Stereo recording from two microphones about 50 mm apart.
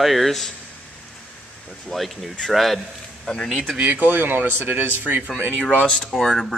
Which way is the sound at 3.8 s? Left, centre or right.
Right.